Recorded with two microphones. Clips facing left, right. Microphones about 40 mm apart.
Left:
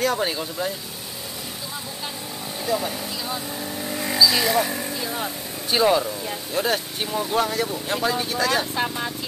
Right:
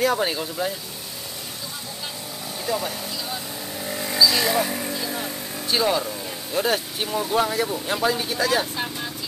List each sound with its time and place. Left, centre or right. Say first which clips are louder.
0.0 s speech: right 1 dB; centre
2.6 s vehicle: left 1 dB; centre
5.1 s vehicle: left 1 dB; centre
6.5 s speech: right 1 dB; centre
8.7 s speech: left 4 dB; centre